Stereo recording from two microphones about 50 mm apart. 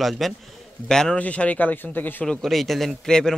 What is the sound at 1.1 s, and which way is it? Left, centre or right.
Speech, left.